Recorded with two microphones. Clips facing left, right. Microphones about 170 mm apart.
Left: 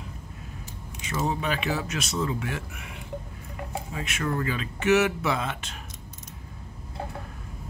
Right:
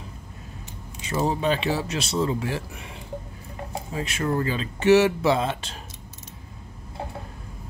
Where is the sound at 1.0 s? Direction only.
35° right (ahead or behind).